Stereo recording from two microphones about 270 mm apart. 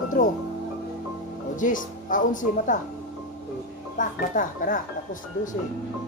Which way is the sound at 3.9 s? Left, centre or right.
Left.